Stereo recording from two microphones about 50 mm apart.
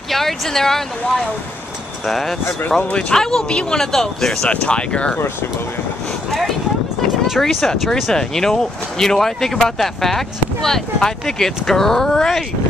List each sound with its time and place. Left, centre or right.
0.1 s speech: centre
2.0 s speech: centre
2.9 s speech: left
3.2 s speech: centre
4.5 s speech: left
7.3 s speech: centre